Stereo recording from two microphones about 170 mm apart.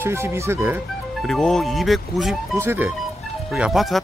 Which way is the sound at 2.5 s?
15° right (ahead or behind).